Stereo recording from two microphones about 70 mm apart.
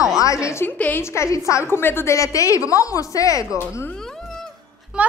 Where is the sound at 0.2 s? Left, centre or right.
Left.